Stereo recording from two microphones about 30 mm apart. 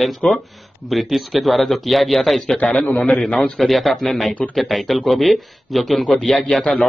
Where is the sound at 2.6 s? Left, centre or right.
Left.